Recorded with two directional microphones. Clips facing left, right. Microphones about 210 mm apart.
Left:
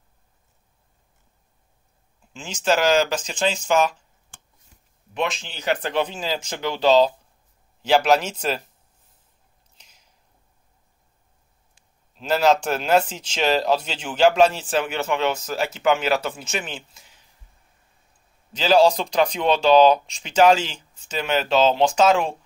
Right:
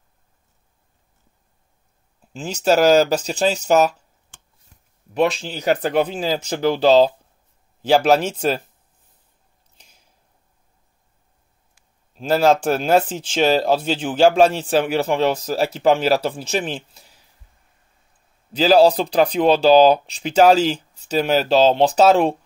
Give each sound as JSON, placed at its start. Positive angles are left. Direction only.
{"t": 2.3, "sound": "speech", "side_deg": -40}
{"t": 5.1, "sound": "speech", "side_deg": -35}
{"t": 12.2, "sound": "speech", "side_deg": -45}
{"t": 13.8, "sound": "speech", "side_deg": -35}
{"t": 18.5, "sound": "speech", "side_deg": -35}